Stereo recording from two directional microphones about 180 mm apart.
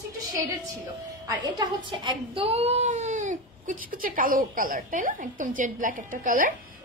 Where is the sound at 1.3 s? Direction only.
20° right (ahead or behind).